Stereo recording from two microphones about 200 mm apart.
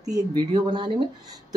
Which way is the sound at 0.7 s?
20° right (ahead or behind).